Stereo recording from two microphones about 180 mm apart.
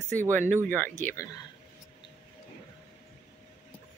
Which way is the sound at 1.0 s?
15° left (ahead or behind).